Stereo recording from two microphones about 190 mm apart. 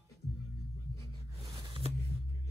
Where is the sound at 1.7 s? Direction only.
30° right (ahead or behind).